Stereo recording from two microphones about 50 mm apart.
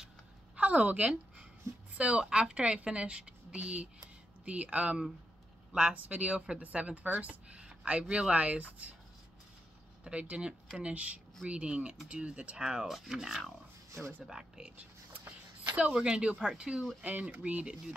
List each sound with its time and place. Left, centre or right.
0.6 s a woman's voice: right
7.6 s a woman's voice: centre
10.0 s a woman's voice: right
12.8 s speech: centre
13.1 s speech: centre
13.8 s a sound: right
14.2 s speech: centre
14.8 s a sound: right
15.9 s a woman's voice: centre
17.0 s a woman's voice: right